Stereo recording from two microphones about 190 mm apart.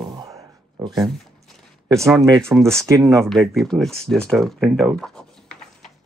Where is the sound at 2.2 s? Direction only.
15° right (ahead or behind).